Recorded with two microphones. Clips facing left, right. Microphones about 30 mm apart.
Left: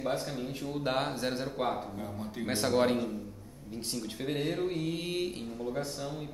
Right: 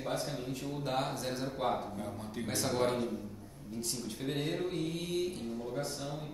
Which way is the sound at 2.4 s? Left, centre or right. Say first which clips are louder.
Left 5 dB; left.